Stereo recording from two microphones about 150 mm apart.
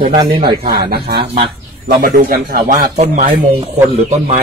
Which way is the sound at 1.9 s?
80° right.